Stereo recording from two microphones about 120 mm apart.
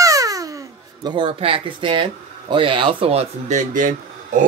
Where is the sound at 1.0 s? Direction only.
40° right (ahead or behind).